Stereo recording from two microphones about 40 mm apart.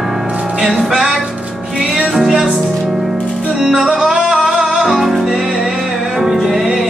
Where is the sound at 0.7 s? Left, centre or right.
Centre.